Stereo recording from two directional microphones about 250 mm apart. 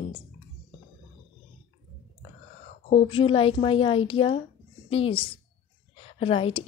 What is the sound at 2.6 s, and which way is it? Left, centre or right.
Speech, left.